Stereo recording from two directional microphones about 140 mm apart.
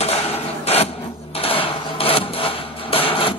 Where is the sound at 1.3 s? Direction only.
40° left (ahead or behind).